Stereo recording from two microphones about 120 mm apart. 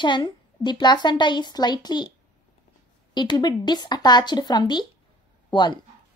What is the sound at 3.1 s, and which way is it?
Speech, 40° left (ahead or behind).